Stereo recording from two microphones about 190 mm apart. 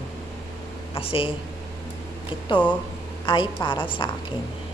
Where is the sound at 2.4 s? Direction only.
25° left (ahead or behind).